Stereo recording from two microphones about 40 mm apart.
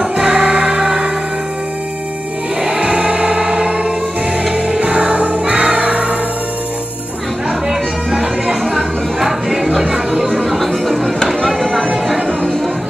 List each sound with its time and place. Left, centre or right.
0.1 s music: right
2.6 s music: right
8.2 s music: centre
10.3 s music: centre
11.2 s chopping: centre